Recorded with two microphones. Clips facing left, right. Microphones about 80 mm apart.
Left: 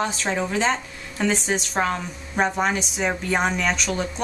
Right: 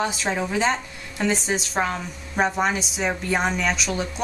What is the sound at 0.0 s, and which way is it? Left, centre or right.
A woman's voice, centre.